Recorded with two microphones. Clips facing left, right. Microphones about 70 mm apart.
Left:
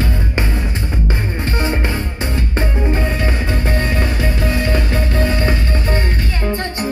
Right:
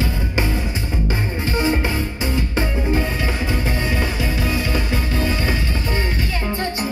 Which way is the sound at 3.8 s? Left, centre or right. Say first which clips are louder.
Left 3 dB; left.